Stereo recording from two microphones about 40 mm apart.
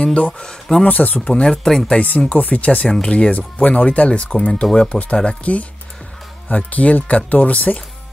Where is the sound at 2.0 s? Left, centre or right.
Left.